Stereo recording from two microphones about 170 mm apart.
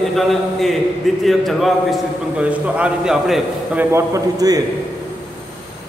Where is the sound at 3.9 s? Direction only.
20° right (ahead or behind).